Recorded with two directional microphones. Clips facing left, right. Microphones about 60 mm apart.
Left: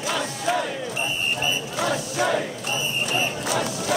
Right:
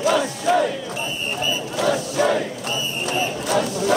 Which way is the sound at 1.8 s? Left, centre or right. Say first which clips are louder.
Right 5 dB; centre.